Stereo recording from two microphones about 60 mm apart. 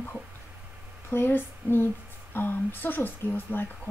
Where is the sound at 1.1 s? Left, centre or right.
Left.